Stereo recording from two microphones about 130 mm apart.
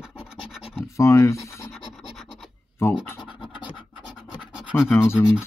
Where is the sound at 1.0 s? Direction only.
25° left (ahead or behind).